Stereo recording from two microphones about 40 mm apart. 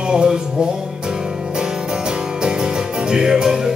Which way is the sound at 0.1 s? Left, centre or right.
Right.